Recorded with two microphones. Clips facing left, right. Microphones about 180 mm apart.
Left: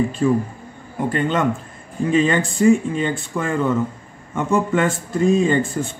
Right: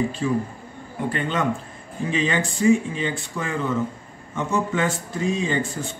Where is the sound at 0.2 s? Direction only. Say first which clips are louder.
Left 7 dB; 50° left (ahead or behind).